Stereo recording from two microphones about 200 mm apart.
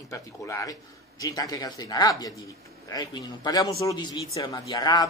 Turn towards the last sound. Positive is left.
turn(degrees=20)  # may be behind; listen again after turning